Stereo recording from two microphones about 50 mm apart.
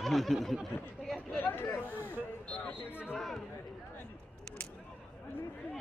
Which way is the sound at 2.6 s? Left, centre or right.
Left.